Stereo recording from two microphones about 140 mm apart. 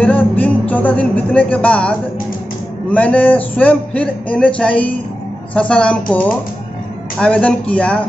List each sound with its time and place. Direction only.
0.0 s a man's voice: 10° left (ahead or behind)